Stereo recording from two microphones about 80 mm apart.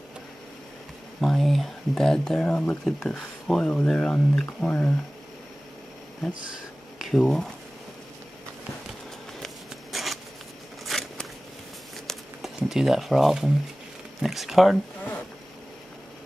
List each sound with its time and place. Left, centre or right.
1.2 s speech: centre
2.8 s speech: centre
7.0 s a sound: centre
9.9 s a sound: centre
10.9 s crackle: centre
12.4 s speech: centre